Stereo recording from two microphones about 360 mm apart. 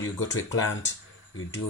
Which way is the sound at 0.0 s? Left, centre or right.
Left.